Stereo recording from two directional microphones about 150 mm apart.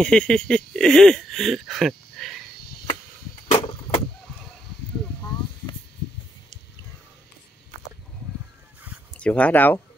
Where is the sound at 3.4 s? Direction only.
40° left (ahead or behind).